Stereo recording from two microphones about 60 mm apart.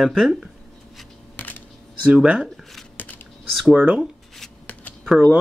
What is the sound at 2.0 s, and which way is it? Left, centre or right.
Speech, right.